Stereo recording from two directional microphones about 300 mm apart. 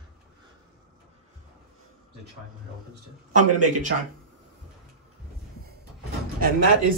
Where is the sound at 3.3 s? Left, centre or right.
Right.